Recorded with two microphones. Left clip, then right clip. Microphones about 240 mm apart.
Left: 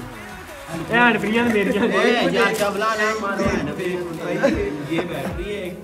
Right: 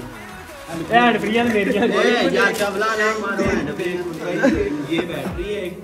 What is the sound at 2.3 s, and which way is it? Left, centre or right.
A man's voice, left.